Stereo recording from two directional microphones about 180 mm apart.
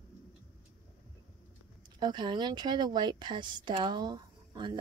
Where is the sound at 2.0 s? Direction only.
25° right (ahead or behind).